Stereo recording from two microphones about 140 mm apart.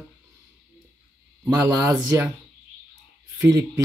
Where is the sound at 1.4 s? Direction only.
15° right (ahead or behind).